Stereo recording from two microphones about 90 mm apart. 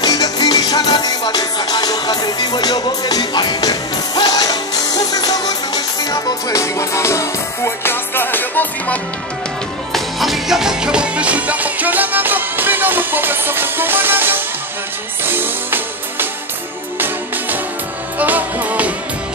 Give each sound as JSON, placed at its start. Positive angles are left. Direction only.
{"t": 0.0, "sound": "music", "side_deg": 45}
{"t": 9.9, "sound": "music", "side_deg": 0}
{"t": 18.2, "sound": "music", "side_deg": -20}